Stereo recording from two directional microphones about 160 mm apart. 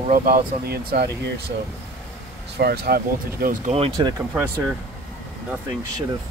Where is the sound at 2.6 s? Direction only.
85° right; by 3.7 s 65° right (ahead or behind).